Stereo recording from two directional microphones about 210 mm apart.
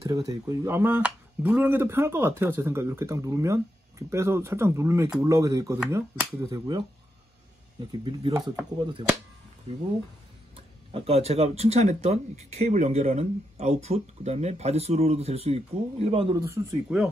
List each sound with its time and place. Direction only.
0.1 s speech: 15° right (ahead or behind)
7.9 s speech: 25° right (ahead or behind)
10.5 s speech: 25° right (ahead or behind)
16.3 s speech: 10° right (ahead or behind)